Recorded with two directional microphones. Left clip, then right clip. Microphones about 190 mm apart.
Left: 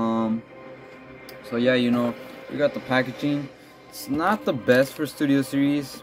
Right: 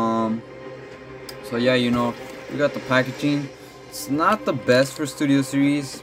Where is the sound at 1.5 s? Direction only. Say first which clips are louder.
Right 1 dB; 10° left (ahead or behind).